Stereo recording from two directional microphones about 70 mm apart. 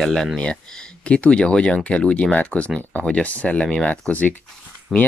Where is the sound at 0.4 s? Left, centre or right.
Centre.